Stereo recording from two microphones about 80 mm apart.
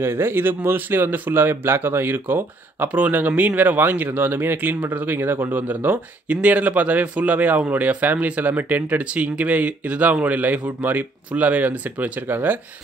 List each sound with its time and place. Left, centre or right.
0.0 s speech: right